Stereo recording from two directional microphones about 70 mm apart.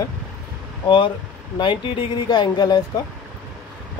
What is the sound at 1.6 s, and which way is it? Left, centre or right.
Speech, left.